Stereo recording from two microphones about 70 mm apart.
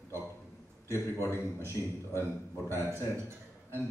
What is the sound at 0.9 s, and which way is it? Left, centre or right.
A man's voice, left.